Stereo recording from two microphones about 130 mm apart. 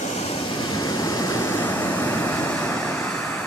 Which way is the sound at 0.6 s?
30° left (ahead or behind).